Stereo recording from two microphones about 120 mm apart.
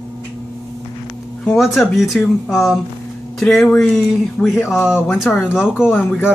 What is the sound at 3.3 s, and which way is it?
Speech, 5° left (ahead or behind).